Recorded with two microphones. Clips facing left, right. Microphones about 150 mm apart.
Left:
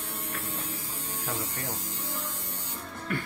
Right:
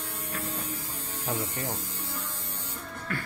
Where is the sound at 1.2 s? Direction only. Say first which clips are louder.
Right 4 dB; 15° right (ahead or behind).